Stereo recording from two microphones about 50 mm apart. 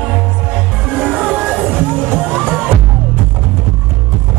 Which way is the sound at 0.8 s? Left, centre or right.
Right.